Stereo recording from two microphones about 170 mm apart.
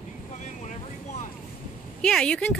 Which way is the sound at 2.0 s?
5° left (ahead or behind).